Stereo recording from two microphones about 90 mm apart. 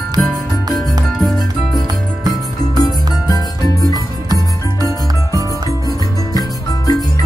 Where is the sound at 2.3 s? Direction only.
45° left (ahead or behind).